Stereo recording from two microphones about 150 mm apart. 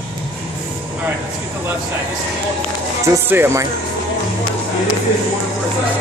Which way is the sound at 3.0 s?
15° right (ahead or behind).